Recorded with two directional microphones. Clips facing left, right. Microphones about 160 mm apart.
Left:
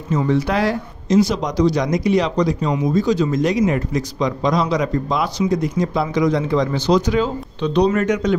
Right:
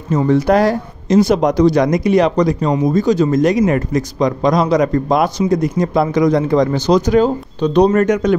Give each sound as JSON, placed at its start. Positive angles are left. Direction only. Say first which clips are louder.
{"t": 0.1, "sound": "speech", "louder": "right 6 dB", "side_deg": -45}